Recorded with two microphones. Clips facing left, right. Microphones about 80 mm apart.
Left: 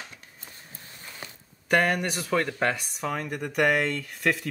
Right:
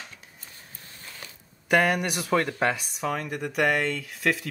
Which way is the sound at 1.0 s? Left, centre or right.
Centre.